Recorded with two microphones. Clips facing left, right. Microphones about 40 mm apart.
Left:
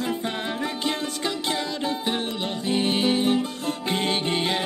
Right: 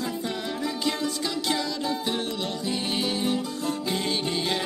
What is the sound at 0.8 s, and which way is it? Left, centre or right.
Music, left.